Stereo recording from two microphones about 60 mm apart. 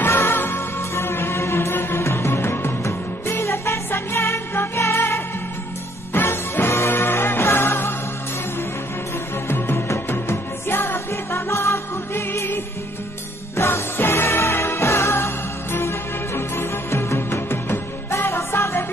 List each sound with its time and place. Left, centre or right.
0.0 s music: left
9.5 s music: left
13.6 s music: left